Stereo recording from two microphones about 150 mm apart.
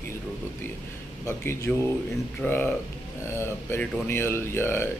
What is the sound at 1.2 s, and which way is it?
Speech, 15° left (ahead or behind).